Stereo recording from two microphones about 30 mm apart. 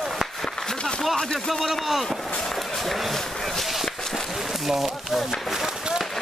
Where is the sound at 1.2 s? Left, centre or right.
Centre.